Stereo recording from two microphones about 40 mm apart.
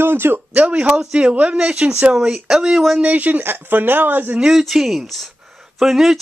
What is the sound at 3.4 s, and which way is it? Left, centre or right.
Speech, right.